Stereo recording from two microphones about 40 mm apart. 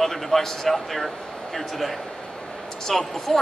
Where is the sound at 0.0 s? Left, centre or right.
Centre.